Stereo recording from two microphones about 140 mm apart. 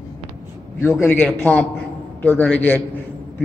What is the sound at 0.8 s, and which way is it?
A man's voice, 15° left (ahead or behind).